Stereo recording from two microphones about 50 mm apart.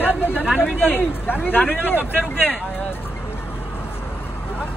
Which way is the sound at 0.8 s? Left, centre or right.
Left.